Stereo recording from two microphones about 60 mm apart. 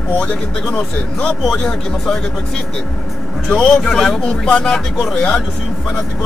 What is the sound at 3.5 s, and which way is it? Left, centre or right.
Speech, centre.